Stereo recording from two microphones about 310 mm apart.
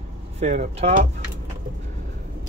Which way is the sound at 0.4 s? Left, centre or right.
Right.